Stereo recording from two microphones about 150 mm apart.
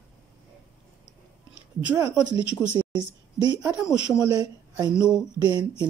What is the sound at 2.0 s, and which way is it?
A woman's voice, 20° right (ahead or behind).